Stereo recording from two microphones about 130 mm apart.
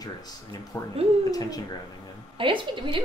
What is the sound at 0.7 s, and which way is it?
Speech, 25° left (ahead or behind).